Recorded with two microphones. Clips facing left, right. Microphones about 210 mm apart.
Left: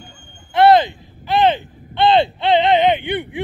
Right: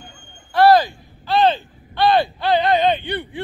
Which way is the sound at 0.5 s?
20° left (ahead or behind).